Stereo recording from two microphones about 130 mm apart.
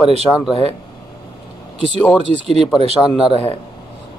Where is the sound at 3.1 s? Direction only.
5° right (ahead or behind).